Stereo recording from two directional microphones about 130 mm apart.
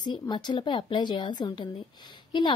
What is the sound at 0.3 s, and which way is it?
Speech, 35° left (ahead or behind).